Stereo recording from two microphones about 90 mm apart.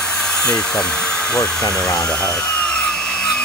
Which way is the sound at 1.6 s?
45° left (ahead or behind).